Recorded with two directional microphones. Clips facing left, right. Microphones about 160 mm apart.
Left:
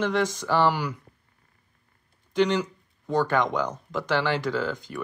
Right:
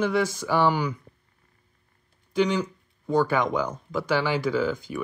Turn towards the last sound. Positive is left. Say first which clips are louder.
# right 3 dB
turn(degrees=-5)  # may be behind; listen again after turning